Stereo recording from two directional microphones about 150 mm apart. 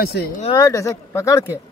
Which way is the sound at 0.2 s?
90° left.